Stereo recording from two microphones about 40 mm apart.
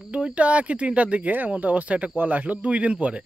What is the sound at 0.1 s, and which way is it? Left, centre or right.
Speech, right.